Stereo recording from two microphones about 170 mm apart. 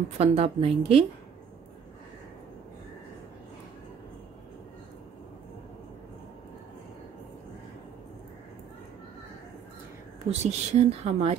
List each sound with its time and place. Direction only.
0.2 s speech: 35° right (ahead or behind)
10.3 s speech: 40° right (ahead or behind)